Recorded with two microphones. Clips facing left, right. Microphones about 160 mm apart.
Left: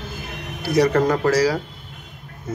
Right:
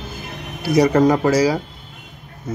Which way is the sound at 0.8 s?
15° right (ahead or behind).